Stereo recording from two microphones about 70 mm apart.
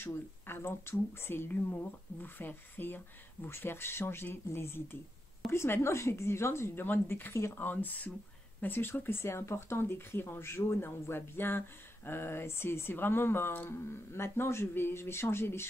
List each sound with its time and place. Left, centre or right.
0.0 s speech: left
7.5 s speech: left